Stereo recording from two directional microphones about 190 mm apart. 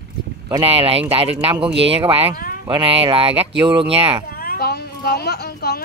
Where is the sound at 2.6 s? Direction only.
30° right (ahead or behind).